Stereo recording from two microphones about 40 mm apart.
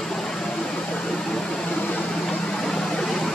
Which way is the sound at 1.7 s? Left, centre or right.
Left.